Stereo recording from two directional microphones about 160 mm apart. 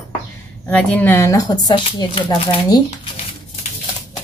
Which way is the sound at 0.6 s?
10° left (ahead or behind).